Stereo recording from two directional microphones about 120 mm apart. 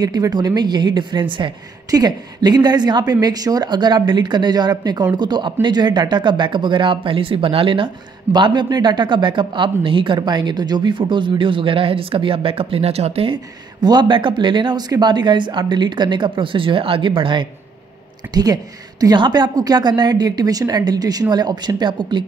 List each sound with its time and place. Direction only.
0.0 s a woman's voice: 35° right (ahead or behind); by 13.4 s 55° right (ahead or behind)
13.7 s a woman's voice: 35° right (ahead or behind)
18.3 s a woman's voice: 35° right (ahead or behind)